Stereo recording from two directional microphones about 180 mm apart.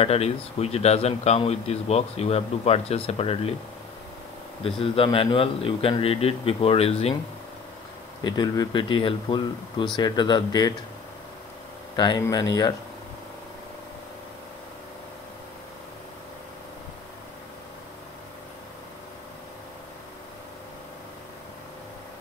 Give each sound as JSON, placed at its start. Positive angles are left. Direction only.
{"t": 0.0, "sound": "speech", "side_deg": 35}
{"t": 4.6, "sound": "speech", "side_deg": 30}
{"t": 8.2, "sound": "speech", "side_deg": 25}
{"t": 12.0, "sound": "speech", "side_deg": 20}